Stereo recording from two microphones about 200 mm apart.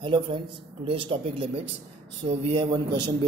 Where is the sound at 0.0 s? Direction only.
25° right (ahead or behind).